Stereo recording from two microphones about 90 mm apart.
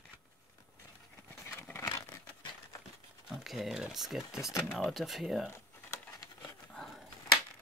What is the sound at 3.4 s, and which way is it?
Speech, centre (ahead or behind).